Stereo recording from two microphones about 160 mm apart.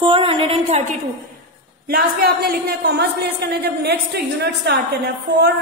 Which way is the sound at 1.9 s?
70° right (ahead or behind).